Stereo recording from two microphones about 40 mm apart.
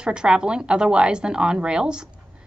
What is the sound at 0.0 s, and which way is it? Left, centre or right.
Speech, right.